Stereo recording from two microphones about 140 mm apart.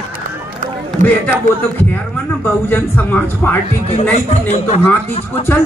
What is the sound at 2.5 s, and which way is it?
Speech, 15° left (ahead or behind).